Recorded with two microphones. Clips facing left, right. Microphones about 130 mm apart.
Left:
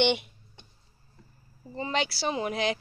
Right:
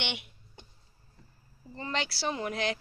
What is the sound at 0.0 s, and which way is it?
Speech, 35° left (ahead or behind).